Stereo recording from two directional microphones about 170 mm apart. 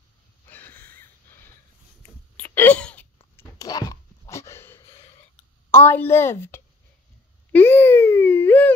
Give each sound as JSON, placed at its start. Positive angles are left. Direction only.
{"t": 0.5, "sound": "sniff", "side_deg": 10}
{"t": 2.3, "sound": "wail", "side_deg": 10}
{"t": 3.5, "sound": "a sound", "side_deg": 20}
{"t": 5.7, "sound": "a woman's voice", "side_deg": 10}
{"t": 7.5, "sound": "baby cry", "side_deg": 15}